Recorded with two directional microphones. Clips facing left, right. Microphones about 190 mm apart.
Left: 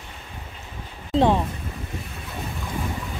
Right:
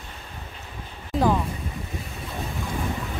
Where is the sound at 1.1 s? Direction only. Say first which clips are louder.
Left 3 dB; 25° left (ahead or behind).